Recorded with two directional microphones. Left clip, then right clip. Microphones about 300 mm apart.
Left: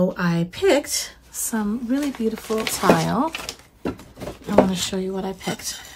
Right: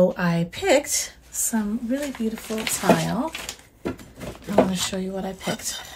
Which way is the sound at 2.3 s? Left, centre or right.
Left.